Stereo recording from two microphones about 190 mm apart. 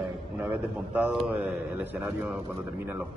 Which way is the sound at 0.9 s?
10° right (ahead or behind).